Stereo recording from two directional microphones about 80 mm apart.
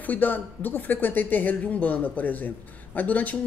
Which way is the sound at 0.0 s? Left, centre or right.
Left.